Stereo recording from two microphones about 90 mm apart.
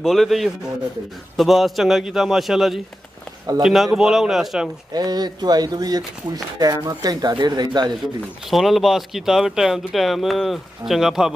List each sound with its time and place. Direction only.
0.0 s speech: centre (ahead or behind)
4.9 s speech: 50° right (ahead or behind)
8.5 s speech: centre (ahead or behind)